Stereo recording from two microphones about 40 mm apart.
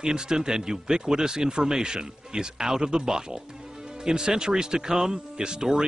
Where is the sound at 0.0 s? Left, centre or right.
Centre.